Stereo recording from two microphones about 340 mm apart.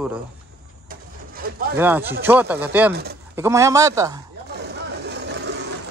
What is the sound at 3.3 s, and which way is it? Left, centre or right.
Speech, centre.